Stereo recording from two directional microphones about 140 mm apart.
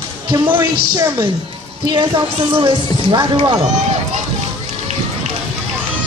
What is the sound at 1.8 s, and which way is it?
Speech, 35° right (ahead or behind).